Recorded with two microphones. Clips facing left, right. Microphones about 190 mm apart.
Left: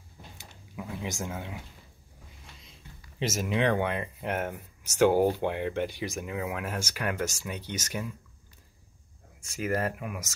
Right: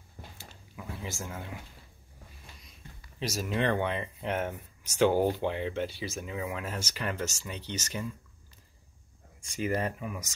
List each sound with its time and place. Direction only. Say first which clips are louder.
0.4 s a sound: left 8 dB; 15° left (ahead or behind)
3.5 s speech: left 2 dB; 10° left (ahead or behind)
9.4 s speech: left 1 dB; 5° left (ahead or behind)